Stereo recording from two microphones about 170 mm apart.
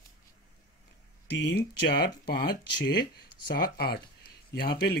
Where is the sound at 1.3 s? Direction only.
75° left (ahead or behind).